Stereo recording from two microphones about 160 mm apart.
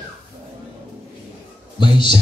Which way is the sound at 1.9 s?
30° left (ahead or behind).